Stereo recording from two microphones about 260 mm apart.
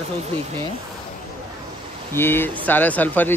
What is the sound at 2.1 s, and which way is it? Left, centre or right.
Speech, centre.